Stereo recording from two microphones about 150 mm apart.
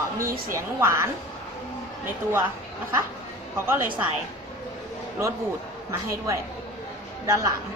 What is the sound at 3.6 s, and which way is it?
Speech, 15° right (ahead or behind).